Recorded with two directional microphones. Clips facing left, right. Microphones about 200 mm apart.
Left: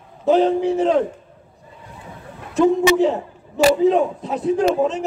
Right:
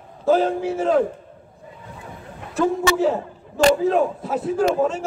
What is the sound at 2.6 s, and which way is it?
Speech, 20° left (ahead or behind).